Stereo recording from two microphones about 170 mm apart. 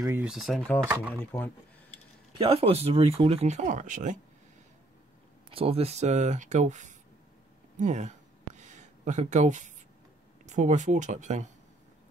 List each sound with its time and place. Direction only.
0.2 s speech: centre (ahead or behind)
0.8 s speech: 10° right (ahead or behind)
1.2 s speech: 10° left (ahead or behind)
2.3 s speech: 35° right (ahead or behind)
5.5 s speech: 35° right (ahead or behind)
7.8 s a sound: 45° right (ahead or behind)
10.4 s speech: 45° right (ahead or behind)